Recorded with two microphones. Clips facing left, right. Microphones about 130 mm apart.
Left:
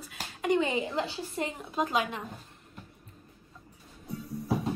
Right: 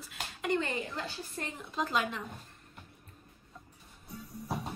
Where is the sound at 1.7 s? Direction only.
50° left (ahead or behind).